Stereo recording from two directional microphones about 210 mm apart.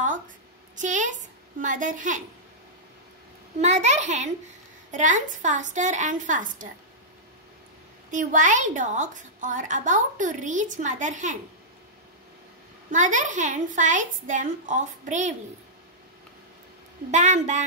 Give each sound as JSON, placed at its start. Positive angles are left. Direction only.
{"t": 0.7, "sound": "a woman's voice", "side_deg": -35}
{"t": 3.6, "sound": "a woman's voice", "side_deg": -35}
{"t": 8.1, "sound": "a woman's voice", "side_deg": -35}
{"t": 12.9, "sound": "a woman's voice", "side_deg": -35}
{"t": 17.1, "sound": "a woman's voice", "side_deg": -35}